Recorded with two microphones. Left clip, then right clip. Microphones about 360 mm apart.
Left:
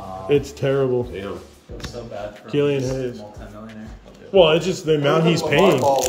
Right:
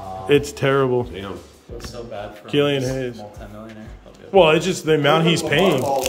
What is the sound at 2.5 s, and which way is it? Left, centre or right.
Speech, centre.